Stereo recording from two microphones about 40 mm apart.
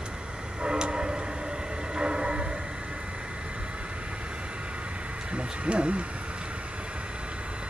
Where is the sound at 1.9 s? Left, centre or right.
Right.